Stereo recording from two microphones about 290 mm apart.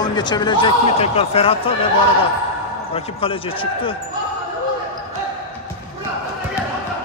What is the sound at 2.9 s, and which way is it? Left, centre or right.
Speech, centre.